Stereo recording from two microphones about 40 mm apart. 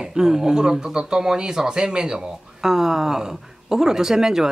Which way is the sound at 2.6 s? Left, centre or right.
Centre.